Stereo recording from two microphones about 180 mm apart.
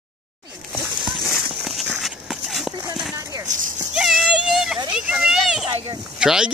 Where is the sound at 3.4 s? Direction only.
45° right (ahead or behind).